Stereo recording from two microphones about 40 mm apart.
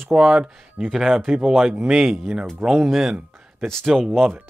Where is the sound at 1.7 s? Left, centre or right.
Right.